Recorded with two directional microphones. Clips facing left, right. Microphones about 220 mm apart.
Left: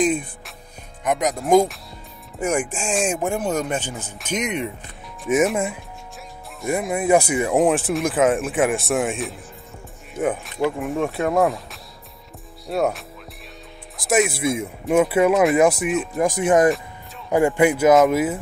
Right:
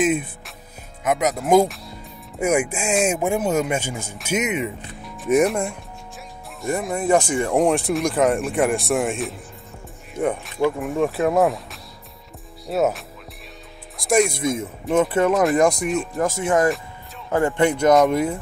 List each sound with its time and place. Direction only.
0.0 s speech: 5° right (ahead or behind)
16.2 s speech: 15° left (ahead or behind)